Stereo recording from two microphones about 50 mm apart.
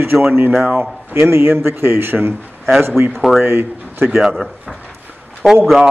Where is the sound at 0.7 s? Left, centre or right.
Right.